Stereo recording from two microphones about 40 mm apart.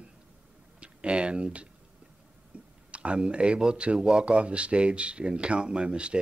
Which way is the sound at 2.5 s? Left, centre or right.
Right.